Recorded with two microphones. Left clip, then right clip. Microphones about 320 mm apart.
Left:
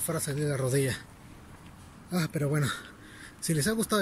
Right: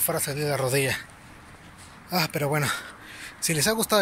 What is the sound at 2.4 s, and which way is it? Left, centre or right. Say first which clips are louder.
Speech: right 6 dB; centre.